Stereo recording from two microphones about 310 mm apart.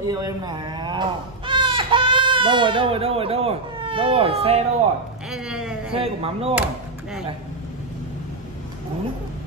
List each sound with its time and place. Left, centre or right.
0.0 s speech: centre
5.3 s a sound: centre
5.9 s speech: centre